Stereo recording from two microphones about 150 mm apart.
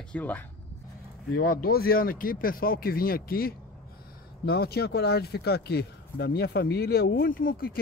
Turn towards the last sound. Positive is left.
turn(degrees=75)  # may be behind; listen again after turning